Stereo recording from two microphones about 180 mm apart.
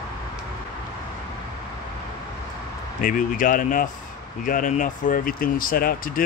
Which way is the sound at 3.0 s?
50° left (ahead or behind).